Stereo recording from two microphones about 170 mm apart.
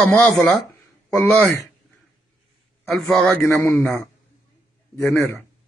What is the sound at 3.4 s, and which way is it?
Speech, 15° left (ahead or behind).